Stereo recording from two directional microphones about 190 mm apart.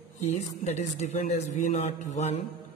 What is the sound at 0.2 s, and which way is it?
A man's voice, 35° left (ahead or behind).